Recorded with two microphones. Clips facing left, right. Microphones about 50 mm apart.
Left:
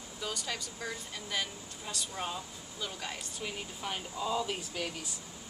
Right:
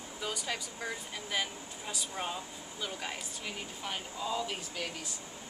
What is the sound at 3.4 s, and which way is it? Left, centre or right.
Speech, centre.